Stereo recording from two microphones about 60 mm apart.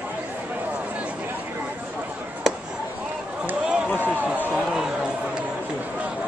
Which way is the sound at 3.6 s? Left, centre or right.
Centre.